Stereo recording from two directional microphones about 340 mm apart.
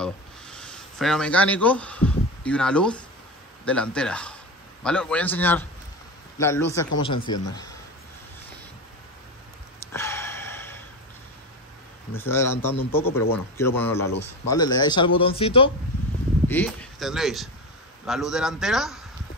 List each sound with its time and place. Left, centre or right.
0.0 s a sound: centre
3.6 s a man's voice: centre
9.8 s gasp: centre
12.2 s a man's voice: centre
16.4 s a man's voice: centre